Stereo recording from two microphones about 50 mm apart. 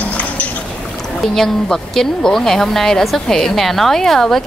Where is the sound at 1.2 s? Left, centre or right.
Centre.